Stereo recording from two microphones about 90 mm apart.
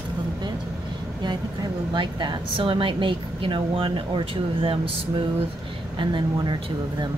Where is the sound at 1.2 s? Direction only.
55° right (ahead or behind); by 4.9 s 80° right.